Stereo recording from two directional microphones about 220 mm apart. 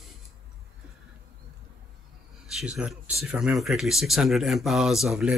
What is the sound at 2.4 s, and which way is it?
Speech, 5° right (ahead or behind).